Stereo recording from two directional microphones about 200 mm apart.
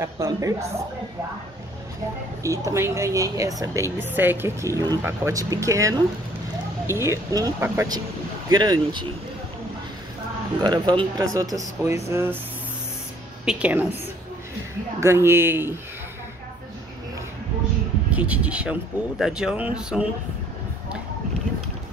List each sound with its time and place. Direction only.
0.0 s a woman's voice: 15° right (ahead or behind)
2.4 s a woman's voice: 15° right (ahead or behind)
10.6 s a woman's voice: 20° right (ahead or behind)
13.5 s a woman's voice: 5° right (ahead or behind)
15.0 s a woman's voice: 15° right (ahead or behind)
18.1 s speech: 5° right (ahead or behind)